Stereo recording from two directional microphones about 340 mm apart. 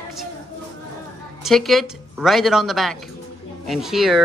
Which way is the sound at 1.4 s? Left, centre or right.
Centre.